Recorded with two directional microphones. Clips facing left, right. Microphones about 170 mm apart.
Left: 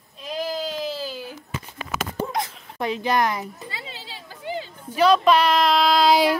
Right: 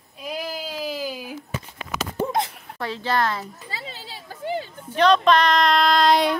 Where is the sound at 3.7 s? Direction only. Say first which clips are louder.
Right 1 dB; 45° right (ahead or behind).